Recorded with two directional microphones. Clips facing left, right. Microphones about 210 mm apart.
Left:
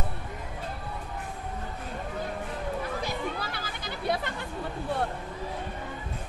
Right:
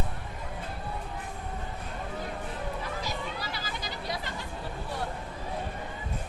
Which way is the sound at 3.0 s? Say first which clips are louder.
Left 3 dB; 55° left (ahead or behind).